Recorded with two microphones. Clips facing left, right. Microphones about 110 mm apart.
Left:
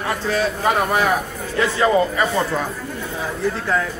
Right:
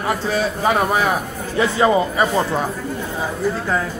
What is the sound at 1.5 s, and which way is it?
A man's voice, 15° right (ahead or behind).